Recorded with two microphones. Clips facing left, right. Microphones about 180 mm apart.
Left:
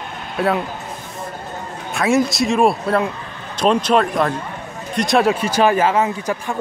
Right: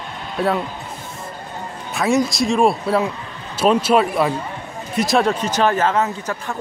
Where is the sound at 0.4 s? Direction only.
Centre (ahead or behind).